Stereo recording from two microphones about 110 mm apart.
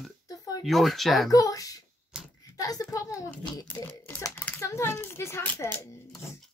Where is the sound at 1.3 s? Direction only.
30° left (ahead or behind).